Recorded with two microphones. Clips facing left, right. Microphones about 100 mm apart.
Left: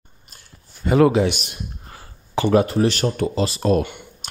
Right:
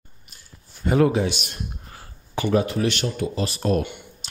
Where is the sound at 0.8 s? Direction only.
90° left.